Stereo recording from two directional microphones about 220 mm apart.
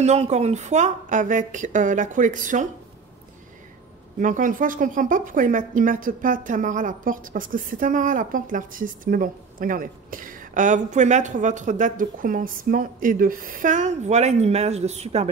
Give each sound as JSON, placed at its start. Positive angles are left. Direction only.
{"t": 0.0, "sound": "a woman's voice", "side_deg": -30}
{"t": 4.2, "sound": "a woman's voice", "side_deg": -35}